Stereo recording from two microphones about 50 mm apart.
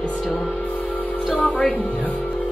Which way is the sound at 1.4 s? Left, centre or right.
Left.